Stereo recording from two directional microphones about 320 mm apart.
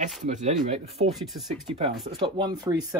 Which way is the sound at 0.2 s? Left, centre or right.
Right.